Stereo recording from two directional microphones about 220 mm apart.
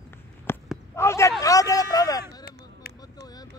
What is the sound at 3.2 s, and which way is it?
Vehicle, 15° left (ahead or behind).